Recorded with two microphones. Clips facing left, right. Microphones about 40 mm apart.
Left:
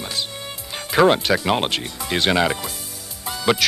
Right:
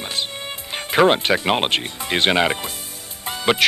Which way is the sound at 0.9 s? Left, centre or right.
Right.